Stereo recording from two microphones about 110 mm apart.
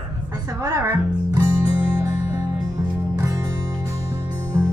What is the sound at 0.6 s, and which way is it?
Speech, 25° right (ahead or behind).